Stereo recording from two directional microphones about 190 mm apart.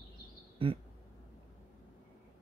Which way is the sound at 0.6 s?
25° right (ahead or behind).